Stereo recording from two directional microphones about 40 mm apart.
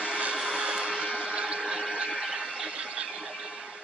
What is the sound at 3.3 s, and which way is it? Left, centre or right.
Vehicle, right.